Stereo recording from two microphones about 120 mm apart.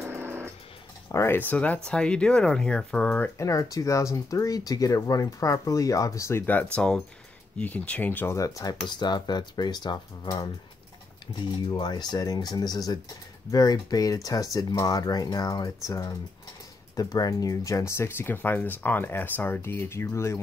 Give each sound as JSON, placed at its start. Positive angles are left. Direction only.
{"t": 0.0, "sound": "dog", "side_deg": -20}
{"t": 1.0, "sound": "speech", "side_deg": 20}
{"t": 3.3, "sound": "speech", "side_deg": 25}
{"t": 8.4, "sound": "speech", "side_deg": 25}
{"t": 11.7, "sound": "speech", "side_deg": 35}